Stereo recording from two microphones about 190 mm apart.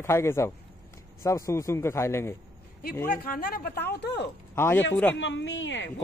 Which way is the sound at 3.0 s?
50° left (ahead or behind).